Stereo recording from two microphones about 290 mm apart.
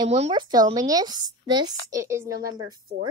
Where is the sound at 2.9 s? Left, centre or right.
Right.